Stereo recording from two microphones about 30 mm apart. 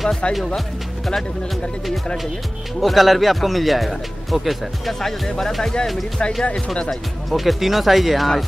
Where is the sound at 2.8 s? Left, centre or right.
Centre.